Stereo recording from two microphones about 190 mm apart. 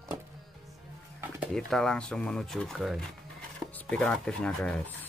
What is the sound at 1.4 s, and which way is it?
Speech, centre (ahead or behind).